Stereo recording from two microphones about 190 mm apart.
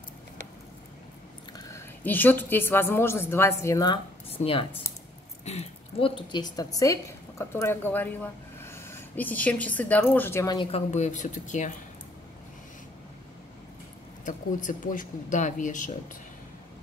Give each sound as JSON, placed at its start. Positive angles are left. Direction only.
{"t": 1.7, "sound": "a woman's voice", "side_deg": 10}
{"t": 4.4, "sound": "a woman's voice", "side_deg": 30}
{"t": 10.7, "sound": "speech", "side_deg": 35}
{"t": 14.2, "sound": "speech", "side_deg": 40}